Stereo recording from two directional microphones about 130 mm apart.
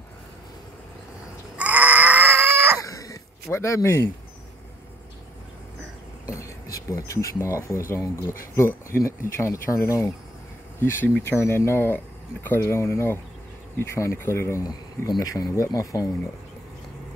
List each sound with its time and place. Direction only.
1.6 s a sound: 15° right (ahead or behind)
2.8 s throat clearing: 25° left (ahead or behind)
6.3 s speech: 25° left (ahead or behind)